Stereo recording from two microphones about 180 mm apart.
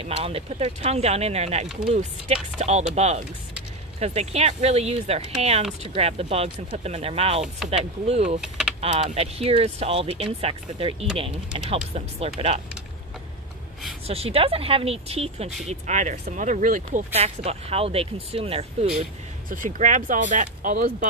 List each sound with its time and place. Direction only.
0.0 s speech: 30° right (ahead or behind)
8.4 s typing: 5° right (ahead or behind)
8.8 s speech: 35° right (ahead or behind)
14.0 s speech: 35° right (ahead or behind)
19.5 s speech: 45° right (ahead or behind)